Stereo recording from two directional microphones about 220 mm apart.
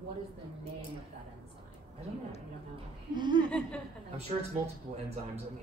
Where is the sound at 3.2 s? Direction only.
20° right (ahead or behind).